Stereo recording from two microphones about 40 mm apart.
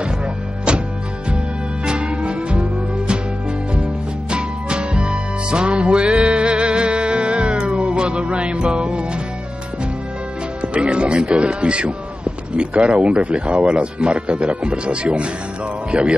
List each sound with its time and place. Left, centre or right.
0.7 s music: right
1.9 s music: right
4.3 s music: right
10.7 s speech: right